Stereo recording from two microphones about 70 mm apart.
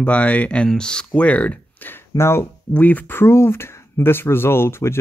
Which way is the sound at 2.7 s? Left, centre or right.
Left.